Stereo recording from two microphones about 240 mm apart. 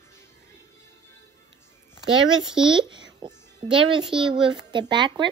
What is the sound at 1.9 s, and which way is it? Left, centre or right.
A child's voice, centre.